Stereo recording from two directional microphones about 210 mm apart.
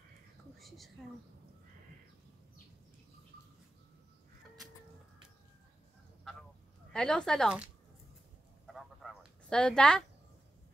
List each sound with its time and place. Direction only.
0.6 s speech: centre (ahead or behind)
6.9 s speech: 5° left (ahead or behind)
8.6 s fowl: centre (ahead or behind)